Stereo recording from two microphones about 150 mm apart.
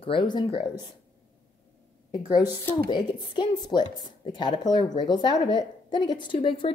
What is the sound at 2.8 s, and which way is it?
A woman's voice, 30° left (ahead or behind).